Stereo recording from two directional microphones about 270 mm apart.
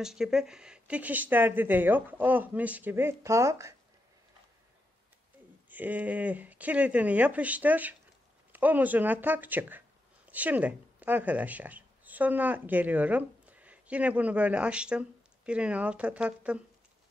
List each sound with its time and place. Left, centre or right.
0.0 s speech: centre
5.7 s a woman's voice: centre